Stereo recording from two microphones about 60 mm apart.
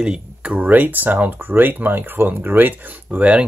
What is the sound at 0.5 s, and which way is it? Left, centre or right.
Speech, right.